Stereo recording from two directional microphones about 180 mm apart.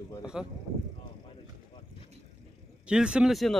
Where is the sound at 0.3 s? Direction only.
5° right (ahead or behind).